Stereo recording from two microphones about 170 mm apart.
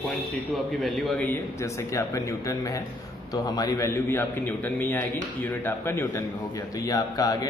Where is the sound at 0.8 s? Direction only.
Centre (ahead or behind).